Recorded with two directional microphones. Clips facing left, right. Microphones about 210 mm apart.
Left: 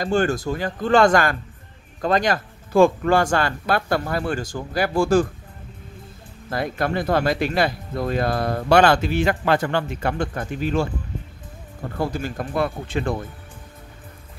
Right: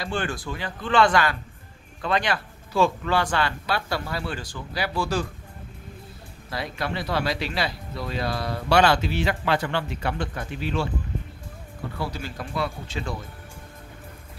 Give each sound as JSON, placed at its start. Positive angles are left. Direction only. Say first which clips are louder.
{"t": 0.0, "sound": "speech", "louder": "left 8 dB", "side_deg": 45}
{"t": 6.5, "sound": "speech", "louder": "left 6 dB", "side_deg": 50}
{"t": 12.0, "sound": "speech", "louder": "left 8 dB", "side_deg": 45}